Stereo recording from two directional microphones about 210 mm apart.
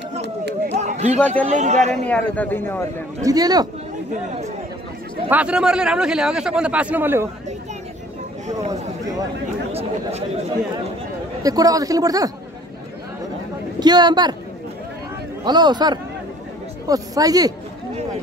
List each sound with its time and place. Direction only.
0.7 s a sound: 30° right (ahead or behind)
1.2 s speech: 5° left (ahead or behind)
1.5 s speech: 35° right (ahead or behind)
2.0 s speech: 5° left (ahead or behind)
3.3 s a man's voice: 20° right (ahead or behind)
5.3 s speech: 5° right (ahead or behind)
9.7 s chatter: 30° right (ahead or behind)
11.4 s a man's voice: 15° right (ahead or behind)
13.7 s a man's voice: 20° right (ahead or behind)
15.4 s a man's voice: 20° right (ahead or behind)